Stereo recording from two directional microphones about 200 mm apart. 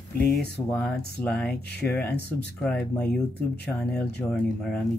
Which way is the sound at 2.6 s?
5° left (ahead or behind).